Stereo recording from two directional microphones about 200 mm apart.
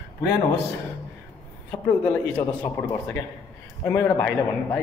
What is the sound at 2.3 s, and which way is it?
Speech, 20° left (ahead or behind).